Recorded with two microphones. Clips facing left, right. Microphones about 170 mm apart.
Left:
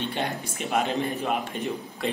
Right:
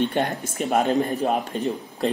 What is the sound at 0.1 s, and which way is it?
A man's voice, 45° right (ahead or behind).